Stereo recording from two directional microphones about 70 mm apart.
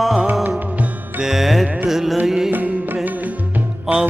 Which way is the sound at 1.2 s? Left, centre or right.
Centre.